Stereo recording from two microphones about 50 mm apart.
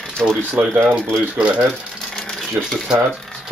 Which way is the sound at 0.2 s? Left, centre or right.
Centre.